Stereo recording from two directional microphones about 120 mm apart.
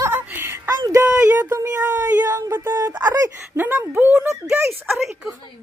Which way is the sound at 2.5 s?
15° right (ahead or behind).